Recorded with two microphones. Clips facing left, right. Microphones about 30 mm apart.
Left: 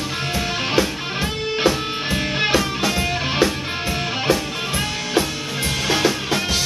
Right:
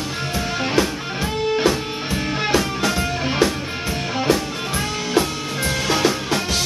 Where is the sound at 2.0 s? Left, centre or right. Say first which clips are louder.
Left 2 dB; left.